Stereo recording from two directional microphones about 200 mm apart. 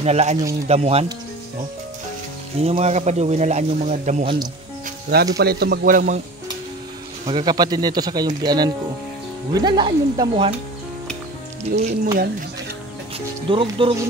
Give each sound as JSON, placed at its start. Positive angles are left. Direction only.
{"t": 0.0, "sound": "speech", "side_deg": -35}
{"t": 2.6, "sound": "speech", "side_deg": -30}
{"t": 5.4, "sound": "speech", "side_deg": -50}
{"t": 7.2, "sound": "speech", "side_deg": -20}
{"t": 11.7, "sound": "speech", "side_deg": -35}
{"t": 13.5, "sound": "speech", "side_deg": -25}